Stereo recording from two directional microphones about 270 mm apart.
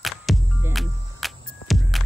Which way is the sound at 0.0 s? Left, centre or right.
Centre.